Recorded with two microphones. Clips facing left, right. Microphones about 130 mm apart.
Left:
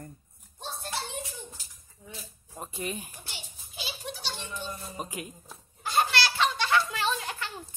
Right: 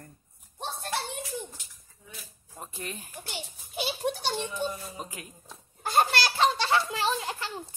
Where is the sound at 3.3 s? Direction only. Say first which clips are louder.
Right 7 dB; 55° right (ahead or behind).